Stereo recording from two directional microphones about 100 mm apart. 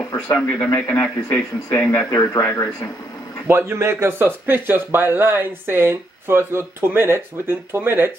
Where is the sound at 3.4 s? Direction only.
25° right (ahead or behind).